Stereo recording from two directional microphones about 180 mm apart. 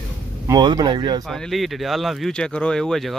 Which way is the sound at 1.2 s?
Centre (ahead or behind).